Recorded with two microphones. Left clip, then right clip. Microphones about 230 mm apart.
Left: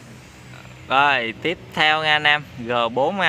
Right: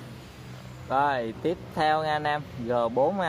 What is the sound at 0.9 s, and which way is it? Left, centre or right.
Speech, left.